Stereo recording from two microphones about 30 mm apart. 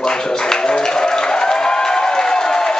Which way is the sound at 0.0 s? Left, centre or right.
Left.